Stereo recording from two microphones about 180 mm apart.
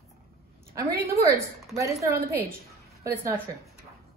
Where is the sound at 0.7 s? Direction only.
15° right (ahead or behind).